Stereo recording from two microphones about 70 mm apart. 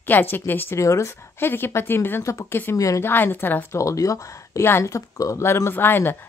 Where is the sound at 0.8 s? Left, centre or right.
Left.